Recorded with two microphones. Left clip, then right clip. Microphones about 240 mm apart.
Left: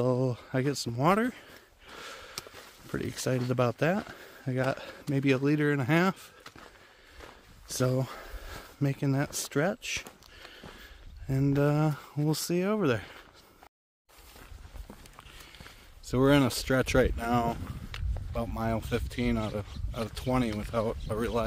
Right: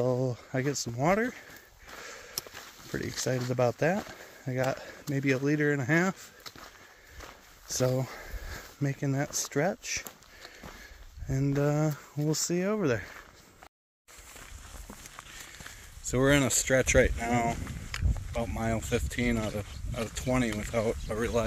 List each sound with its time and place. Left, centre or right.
0.0 s speech: centre
2.0 s a sound: centre
2.9 s speech: centre
7.6 s speech: centre
11.2 s speech: centre
16.0 s speech: centre